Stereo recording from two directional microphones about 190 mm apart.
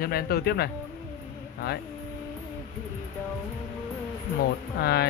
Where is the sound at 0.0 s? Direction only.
55° left (ahead or behind).